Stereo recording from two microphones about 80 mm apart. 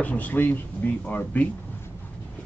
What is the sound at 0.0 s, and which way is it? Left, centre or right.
Speech, centre.